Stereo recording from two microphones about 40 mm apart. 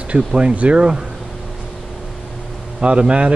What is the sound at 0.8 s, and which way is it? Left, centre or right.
Speech, right.